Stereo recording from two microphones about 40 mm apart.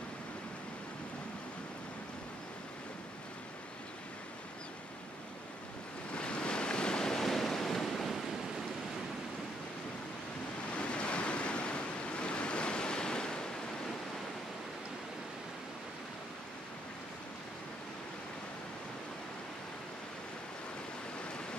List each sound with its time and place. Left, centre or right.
6.1 s waves: left
7.2 s waves: centre
10.8 s waves: left